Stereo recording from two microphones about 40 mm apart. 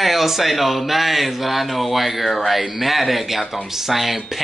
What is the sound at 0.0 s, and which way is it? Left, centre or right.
Speech, centre.